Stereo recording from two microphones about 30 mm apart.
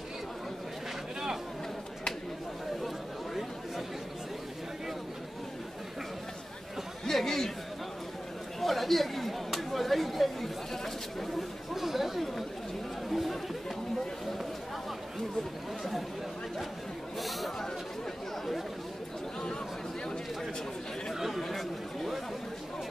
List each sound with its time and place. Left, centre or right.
7.1 s chatter: centre
8.5 s chatter: centre
11.7 s chatter: centre
17.2 s chatter: centre
21.3 s chatter: centre